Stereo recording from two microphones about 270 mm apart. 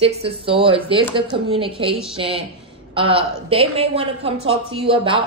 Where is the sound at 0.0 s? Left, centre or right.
Right.